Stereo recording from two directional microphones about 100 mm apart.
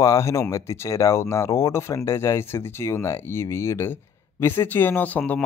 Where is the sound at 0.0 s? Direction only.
30° left (ahead or behind).